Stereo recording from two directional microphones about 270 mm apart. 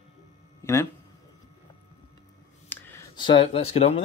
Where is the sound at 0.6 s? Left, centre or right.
Centre.